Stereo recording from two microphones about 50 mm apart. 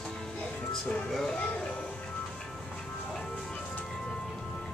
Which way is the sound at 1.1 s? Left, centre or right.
Centre.